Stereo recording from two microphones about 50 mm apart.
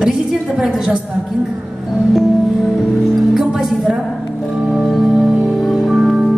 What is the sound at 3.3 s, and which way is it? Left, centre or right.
Speech, centre.